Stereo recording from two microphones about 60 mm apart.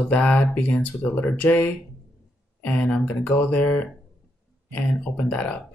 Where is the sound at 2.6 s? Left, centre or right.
Left.